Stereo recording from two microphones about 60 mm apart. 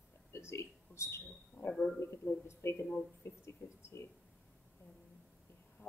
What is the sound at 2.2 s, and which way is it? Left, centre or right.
Speech, left.